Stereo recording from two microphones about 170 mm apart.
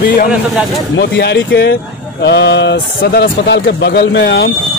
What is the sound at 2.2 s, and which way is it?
Speech, 85° left.